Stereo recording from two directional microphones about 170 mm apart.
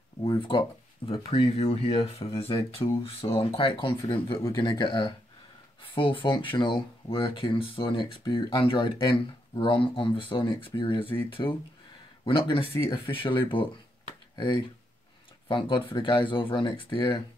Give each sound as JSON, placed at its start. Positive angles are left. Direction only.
{"t": 0.2, "sound": "speech", "side_deg": 30}